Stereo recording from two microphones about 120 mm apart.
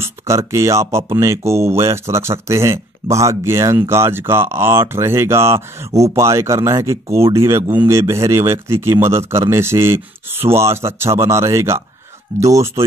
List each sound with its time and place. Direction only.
0.0 s speech: 25° right (ahead or behind)